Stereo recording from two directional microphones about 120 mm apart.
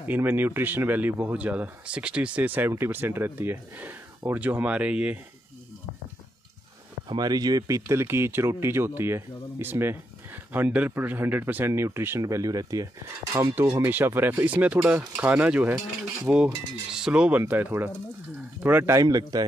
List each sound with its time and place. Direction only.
0.0 s speech: 15° right (ahead or behind)
7.1 s speech: 35° right (ahead or behind)